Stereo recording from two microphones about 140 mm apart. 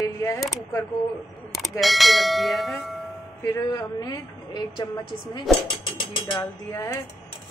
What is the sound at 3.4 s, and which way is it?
Speech, 25° left (ahead or behind).